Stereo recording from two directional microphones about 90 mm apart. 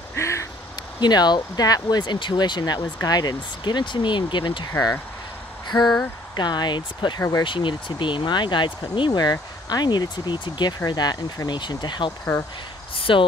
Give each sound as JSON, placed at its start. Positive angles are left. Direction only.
{"t": 0.1, "sound": "a sound", "side_deg": 35}
{"t": 0.9, "sound": "speech", "side_deg": 55}
{"t": 5.7, "sound": "speech", "side_deg": 50}
{"t": 7.2, "sound": "speech", "side_deg": 40}
{"t": 7.4, "sound": "speech", "side_deg": 65}
{"t": 12.9, "sound": "speech", "side_deg": 80}